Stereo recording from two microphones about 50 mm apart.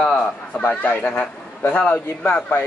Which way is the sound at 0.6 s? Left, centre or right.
Left.